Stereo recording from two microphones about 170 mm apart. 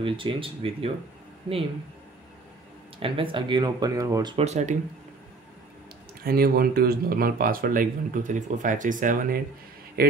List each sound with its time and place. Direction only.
0.0 s speech: 30° right (ahead or behind)
3.0 s speech: 30° right (ahead or behind)
4.5 s speech: 45° right (ahead or behind)
6.2 s speech: 60° right (ahead or behind)
10.0 s a man's voice: 65° right (ahead or behind)